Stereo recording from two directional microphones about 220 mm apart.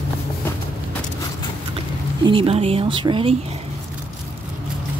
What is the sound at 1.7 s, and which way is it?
Speech, 25° right (ahead or behind).